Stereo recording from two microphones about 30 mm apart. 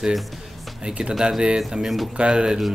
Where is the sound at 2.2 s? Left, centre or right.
Right.